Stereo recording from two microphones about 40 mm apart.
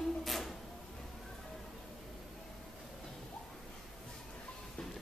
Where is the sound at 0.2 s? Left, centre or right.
Centre.